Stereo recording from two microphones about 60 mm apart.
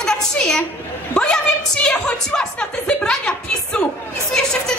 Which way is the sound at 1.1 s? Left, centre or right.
Centre.